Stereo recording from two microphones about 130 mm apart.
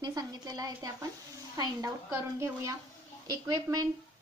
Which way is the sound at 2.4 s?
20° right (ahead or behind).